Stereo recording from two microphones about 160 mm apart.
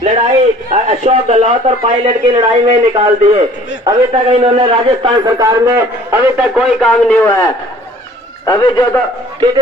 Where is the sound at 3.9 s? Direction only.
15° right (ahead or behind).